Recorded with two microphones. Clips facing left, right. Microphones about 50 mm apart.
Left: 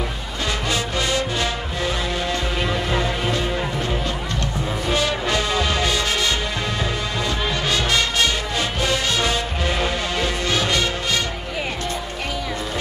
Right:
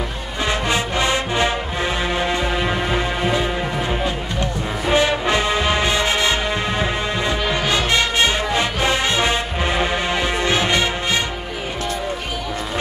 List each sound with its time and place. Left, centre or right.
0.7 s music: right
4.8 s music: right